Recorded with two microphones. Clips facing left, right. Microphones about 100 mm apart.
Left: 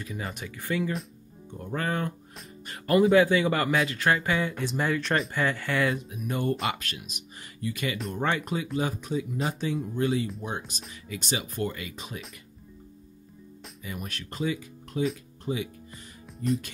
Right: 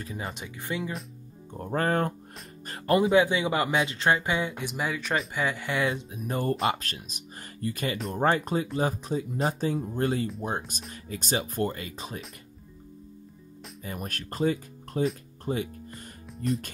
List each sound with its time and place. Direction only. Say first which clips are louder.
0.0 s speech: even; 35° right (ahead or behind)
1.6 s speech: right 4 dB; 40° right (ahead or behind)
2.6 s music: right 1 dB; 35° right (ahead or behind)
3.2 s speech: left 1 dB; 20° right (ahead or behind); by 12.2 s 35° right (ahead or behind)
13.8 s speech: right 2 dB; 45° right (ahead or behind)
15.4 s music: right 1 dB; 45° right (ahead or behind)